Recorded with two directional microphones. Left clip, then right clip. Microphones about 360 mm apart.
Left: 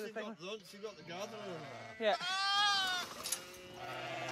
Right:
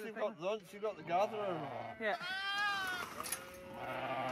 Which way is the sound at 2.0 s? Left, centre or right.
Left.